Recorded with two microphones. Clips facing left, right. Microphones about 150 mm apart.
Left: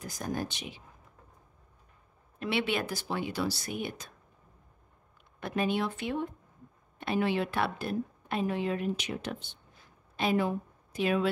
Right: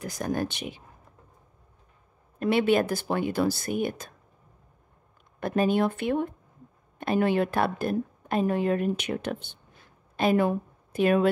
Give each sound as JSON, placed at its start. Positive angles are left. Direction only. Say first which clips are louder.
{"t": 0.0, "sound": "speech", "louder": "right 6 dB", "side_deg": -65}
{"t": 2.3, "sound": "a woman's voice", "louder": "right 8 dB", "side_deg": -45}
{"t": 5.4, "sound": "a woman's voice", "louder": "right 6 dB", "side_deg": -45}